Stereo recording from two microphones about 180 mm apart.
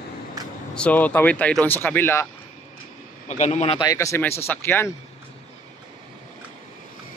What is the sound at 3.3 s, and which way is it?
Speech, 40° left (ahead or behind).